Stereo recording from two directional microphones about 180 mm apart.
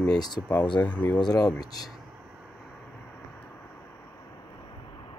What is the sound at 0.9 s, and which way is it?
Speech, 5° left (ahead or behind).